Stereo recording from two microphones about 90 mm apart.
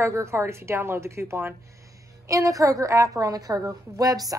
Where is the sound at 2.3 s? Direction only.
40° right (ahead or behind).